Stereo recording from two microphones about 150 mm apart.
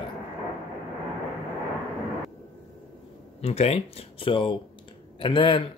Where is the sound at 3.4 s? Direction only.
45° left (ahead or behind).